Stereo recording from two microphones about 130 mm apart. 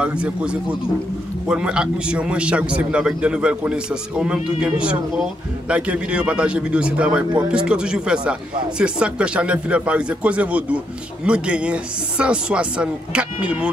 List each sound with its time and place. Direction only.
0.0 s a man's voice: 10° right (ahead or behind)